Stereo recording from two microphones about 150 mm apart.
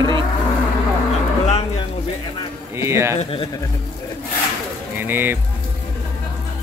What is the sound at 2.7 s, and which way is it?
Speech, 20° right (ahead or behind).